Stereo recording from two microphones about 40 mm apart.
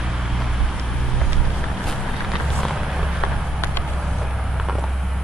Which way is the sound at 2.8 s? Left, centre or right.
Centre.